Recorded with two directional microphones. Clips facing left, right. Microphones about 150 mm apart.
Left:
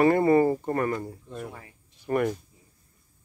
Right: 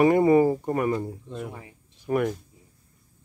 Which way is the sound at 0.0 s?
15° right (ahead or behind).